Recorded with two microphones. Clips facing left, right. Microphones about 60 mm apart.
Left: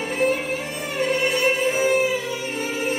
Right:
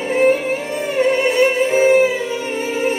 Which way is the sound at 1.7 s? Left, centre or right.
Right.